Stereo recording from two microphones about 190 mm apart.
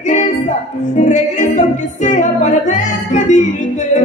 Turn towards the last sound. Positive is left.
turn(degrees=40)  # may be behind; listen again after turning